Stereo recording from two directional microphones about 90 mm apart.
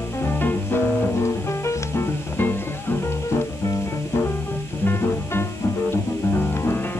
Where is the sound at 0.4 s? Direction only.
20° left (ahead or behind).